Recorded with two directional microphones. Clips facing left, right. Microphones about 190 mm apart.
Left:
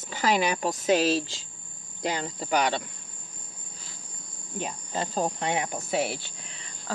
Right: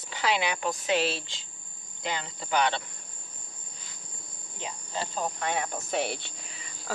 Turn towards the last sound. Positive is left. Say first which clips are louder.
# even
turn(degrees=0)  # may be behind; listen again after turning